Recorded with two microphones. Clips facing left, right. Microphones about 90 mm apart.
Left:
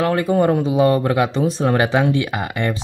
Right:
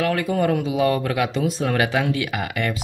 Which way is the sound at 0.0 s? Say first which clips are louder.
Left 4 dB; 30° left (ahead or behind).